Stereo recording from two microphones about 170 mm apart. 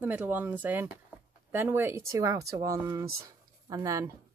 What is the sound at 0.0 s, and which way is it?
Speech, 10° right (ahead or behind).